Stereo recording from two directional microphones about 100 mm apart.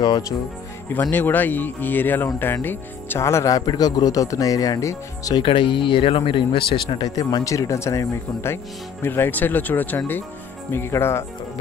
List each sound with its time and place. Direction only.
1.1 s speech: 20° left (ahead or behind); by 5.3 s 35° left (ahead or behind)
5.4 s speech: 55° left (ahead or behind)
7.1 s speech: 40° left (ahead or behind); by 11.2 s 25° left (ahead or behind)